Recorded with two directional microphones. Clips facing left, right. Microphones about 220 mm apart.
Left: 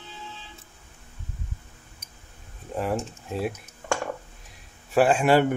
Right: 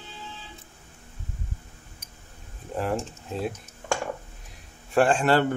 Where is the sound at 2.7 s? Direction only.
5° left (ahead or behind).